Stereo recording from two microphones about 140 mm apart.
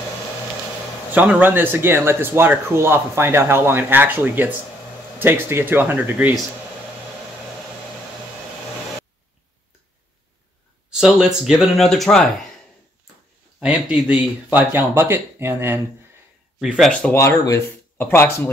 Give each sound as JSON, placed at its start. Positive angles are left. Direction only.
{"t": 1.1, "sound": "speech", "side_deg": -15}
{"t": 10.9, "sound": "speech", "side_deg": -5}
{"t": 13.6, "sound": "speech", "side_deg": -5}
{"t": 16.5, "sound": "speech", "side_deg": 0}
{"t": 17.1, "sound": "speech", "side_deg": 20}